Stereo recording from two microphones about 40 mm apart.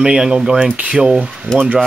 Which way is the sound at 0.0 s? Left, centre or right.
Centre.